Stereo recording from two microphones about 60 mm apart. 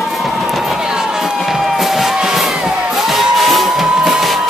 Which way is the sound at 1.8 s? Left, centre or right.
Centre.